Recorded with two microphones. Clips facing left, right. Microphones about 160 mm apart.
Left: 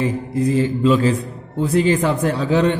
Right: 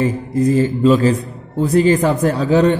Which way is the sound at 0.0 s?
45° right (ahead or behind).